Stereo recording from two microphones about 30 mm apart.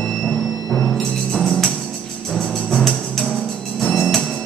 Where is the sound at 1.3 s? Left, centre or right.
Centre.